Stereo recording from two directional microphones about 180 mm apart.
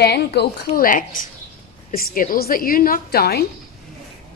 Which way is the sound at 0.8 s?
45° left (ahead or behind).